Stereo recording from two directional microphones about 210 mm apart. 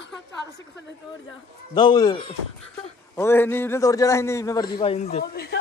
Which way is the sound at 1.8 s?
20° left (ahead or behind).